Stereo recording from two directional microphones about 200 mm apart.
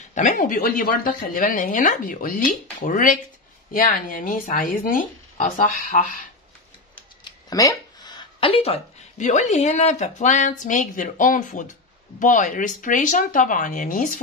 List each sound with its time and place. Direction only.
0.1 s speech: 40° left (ahead or behind)
7.2 s speech: 20° left (ahead or behind); by 14.2 s 40° left (ahead or behind)